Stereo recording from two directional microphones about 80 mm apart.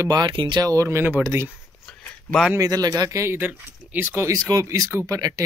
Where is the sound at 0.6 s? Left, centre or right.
Right.